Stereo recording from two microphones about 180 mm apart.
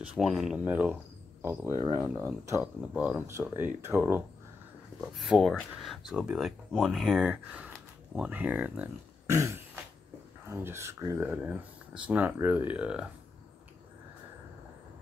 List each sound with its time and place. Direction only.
0.0 s speech: 5° right (ahead or behind)
5.0 s speech: centre (ahead or behind)